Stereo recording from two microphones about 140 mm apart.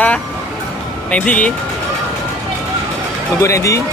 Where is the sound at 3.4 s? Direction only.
20° left (ahead or behind).